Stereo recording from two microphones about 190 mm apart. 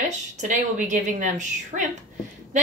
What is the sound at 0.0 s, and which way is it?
A woman's voice, 40° right (ahead or behind).